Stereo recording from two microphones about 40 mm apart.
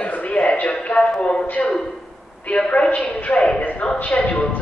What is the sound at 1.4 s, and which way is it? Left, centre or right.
A woman's voice, left.